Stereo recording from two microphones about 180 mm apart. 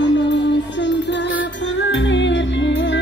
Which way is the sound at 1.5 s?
90° left.